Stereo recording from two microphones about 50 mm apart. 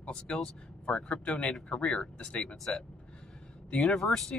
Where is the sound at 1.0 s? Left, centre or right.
Left.